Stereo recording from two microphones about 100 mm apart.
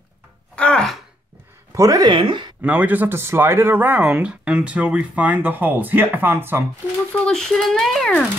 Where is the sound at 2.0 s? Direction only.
55° right (ahead or behind).